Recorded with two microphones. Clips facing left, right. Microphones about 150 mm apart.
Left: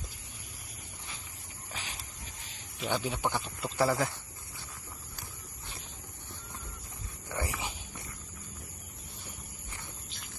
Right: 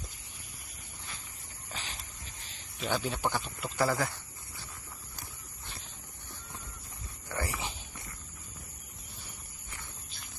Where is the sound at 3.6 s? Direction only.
25° left (ahead or behind).